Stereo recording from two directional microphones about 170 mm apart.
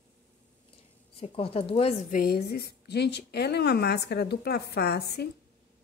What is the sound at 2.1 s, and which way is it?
A woman's voice, 60° left (ahead or behind).